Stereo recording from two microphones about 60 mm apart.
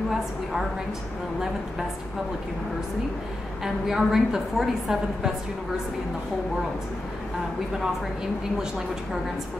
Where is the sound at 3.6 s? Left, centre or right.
Centre.